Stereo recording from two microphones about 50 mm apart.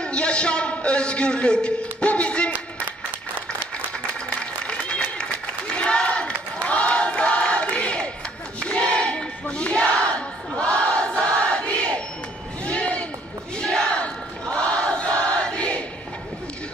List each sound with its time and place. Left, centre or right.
0.0 s a sound: left
4.4 s applause: left
5.7 s crowd: centre
8.5 s battle cry: left
11.1 s crowd: left
12.6 s a sound: left
13.8 s crowd: left
14.5 s choir: centre